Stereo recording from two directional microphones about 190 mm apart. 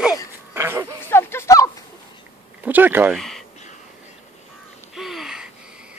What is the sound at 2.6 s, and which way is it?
Speech, 10° right (ahead or behind).